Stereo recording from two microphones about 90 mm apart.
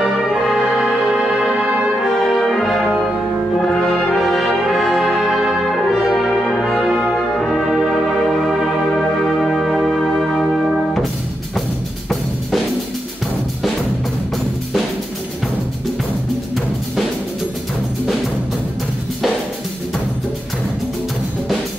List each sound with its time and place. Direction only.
0.0 s music: centre (ahead or behind); by 1.9 s 15° right (ahead or behind)
2.0 s brass instrument: centre (ahead or behind)
7.4 s music: 5° right (ahead or behind)
12.1 s drum kit: 5° left (ahead or behind)